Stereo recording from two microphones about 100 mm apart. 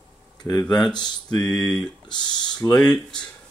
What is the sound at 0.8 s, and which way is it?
Speech, 5° left (ahead or behind).